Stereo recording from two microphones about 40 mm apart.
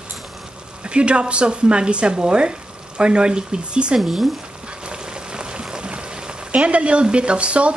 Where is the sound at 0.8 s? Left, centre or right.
Right.